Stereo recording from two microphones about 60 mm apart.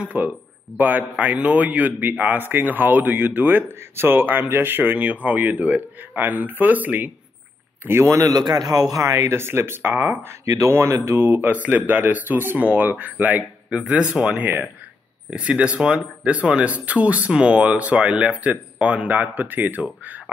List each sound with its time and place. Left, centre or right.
0.0 s speech: right
7.8 s a man's voice: right
8.1 s a man's voice: right
10.4 s speech: right
10.7 s speech: right; by 14.1 s centre
14.4 s speech: right
15.2 s speech: centre